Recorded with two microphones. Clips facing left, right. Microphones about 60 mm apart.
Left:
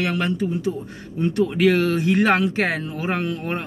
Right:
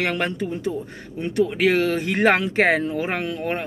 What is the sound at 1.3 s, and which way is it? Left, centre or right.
Speech, right.